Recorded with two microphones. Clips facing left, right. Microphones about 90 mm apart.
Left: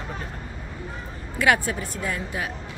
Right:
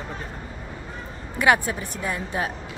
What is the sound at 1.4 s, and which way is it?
A woman's voice, 20° right (ahead or behind).